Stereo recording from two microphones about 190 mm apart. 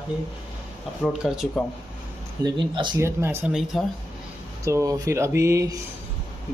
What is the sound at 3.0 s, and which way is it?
Speech, 15° right (ahead or behind).